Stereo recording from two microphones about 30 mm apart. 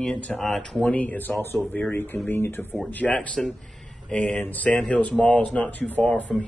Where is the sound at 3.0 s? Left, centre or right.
Centre.